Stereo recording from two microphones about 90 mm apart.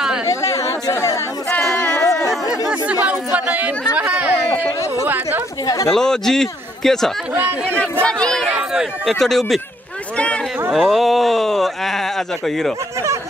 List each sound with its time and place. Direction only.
0.3 s chatter: 35° left (ahead or behind)
1.6 s a sound: 5° left (ahead or behind)
2.0 s chatter: 40° left (ahead or behind)
2.7 s speech: 15° right (ahead or behind)
5.9 s a man's voice: 5° left (ahead or behind)
7.3 s speech: 25° right (ahead or behind)
8.0 s a man's voice: 10° left (ahead or behind)
10.1 s a sound: 10° left (ahead or behind)
10.7 s speech: centre (ahead or behind)